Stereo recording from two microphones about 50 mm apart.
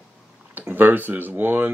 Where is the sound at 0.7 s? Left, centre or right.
Right.